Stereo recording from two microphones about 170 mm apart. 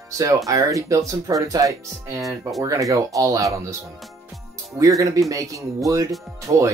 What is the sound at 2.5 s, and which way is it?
Speech, 20° right (ahead or behind).